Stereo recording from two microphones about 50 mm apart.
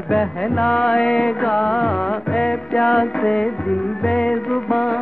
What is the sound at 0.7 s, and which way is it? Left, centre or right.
Music, centre.